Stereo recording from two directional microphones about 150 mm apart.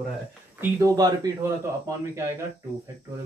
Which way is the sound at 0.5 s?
25° right (ahead or behind).